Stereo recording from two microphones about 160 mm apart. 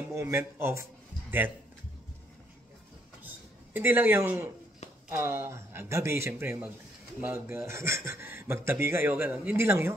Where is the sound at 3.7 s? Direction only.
15° right (ahead or behind).